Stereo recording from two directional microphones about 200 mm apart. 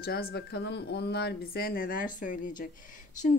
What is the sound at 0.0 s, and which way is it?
Speech, 50° left (ahead or behind).